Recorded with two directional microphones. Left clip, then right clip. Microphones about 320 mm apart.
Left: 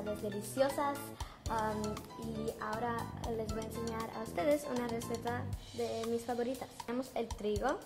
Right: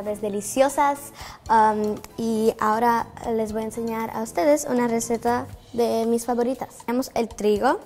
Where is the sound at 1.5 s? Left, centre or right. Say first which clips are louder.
Right 19 dB; right.